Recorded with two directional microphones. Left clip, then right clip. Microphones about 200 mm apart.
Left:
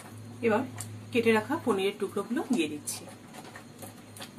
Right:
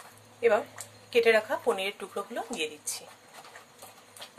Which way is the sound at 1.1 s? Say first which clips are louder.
Right 3 dB; 40° right (ahead or behind).